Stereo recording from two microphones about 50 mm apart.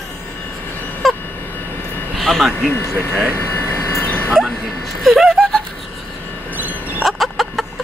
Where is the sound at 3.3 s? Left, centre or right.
Left.